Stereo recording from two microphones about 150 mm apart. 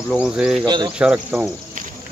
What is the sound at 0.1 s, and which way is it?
Cricket, 5° right (ahead or behind).